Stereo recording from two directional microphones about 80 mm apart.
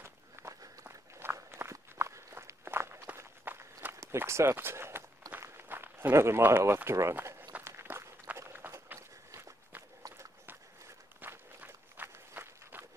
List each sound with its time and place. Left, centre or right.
0.0 s walk: right
4.2 s speech: right
5.4 s run: right
7.6 s walk: right
11.1 s walk: right